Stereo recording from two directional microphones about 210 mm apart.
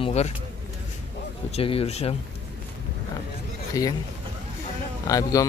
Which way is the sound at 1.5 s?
25° left (ahead or behind).